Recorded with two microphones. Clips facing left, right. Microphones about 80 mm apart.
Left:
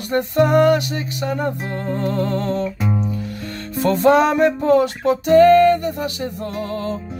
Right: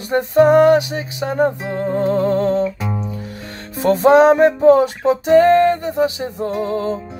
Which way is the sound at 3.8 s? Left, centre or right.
Right.